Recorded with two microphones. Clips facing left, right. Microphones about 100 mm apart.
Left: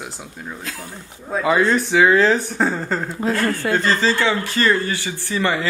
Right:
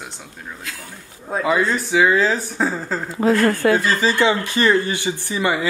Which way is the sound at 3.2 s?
90° right.